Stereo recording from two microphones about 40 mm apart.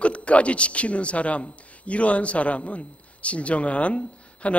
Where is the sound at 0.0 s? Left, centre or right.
Left.